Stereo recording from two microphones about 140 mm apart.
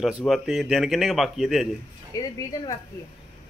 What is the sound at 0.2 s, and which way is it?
A man's voice, centre (ahead or behind).